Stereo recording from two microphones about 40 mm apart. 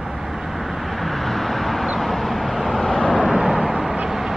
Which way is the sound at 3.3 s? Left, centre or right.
Centre.